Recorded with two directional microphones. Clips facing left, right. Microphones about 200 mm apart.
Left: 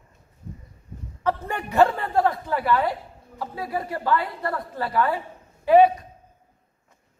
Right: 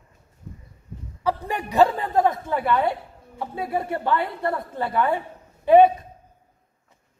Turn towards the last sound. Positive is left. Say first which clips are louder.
# right 1 dB
turn(degrees=-20)  # may be behind; listen again after turning